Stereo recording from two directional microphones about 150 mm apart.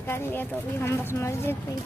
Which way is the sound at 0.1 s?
15° left (ahead or behind).